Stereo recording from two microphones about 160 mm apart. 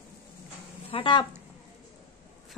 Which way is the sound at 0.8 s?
30° left (ahead or behind).